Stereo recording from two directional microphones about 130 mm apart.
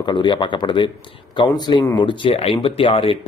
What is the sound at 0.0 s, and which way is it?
Speech, 35° left (ahead or behind).